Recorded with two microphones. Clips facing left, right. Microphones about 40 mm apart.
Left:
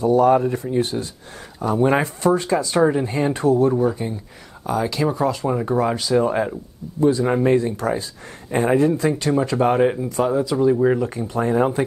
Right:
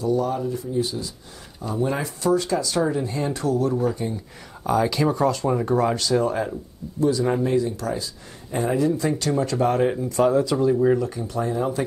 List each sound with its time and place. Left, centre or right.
0.0 s speech: left
0.4 s speech: left
3.7 s speech: centre
4.6 s speech: centre
7.0 s speech: left
9.2 s speech: left
11.1 s speech: left